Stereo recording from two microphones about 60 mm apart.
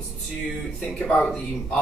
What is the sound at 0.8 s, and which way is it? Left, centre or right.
Speech, centre.